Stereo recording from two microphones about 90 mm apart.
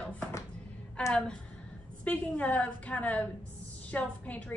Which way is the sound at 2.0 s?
15° left (ahead or behind).